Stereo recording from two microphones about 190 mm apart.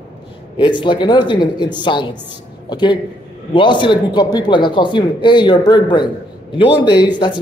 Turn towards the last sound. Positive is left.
turn(degrees=20)  # may be behind; listen again after turning